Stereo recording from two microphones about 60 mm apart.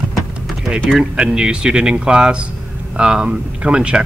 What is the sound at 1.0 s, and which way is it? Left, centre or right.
Speech, centre.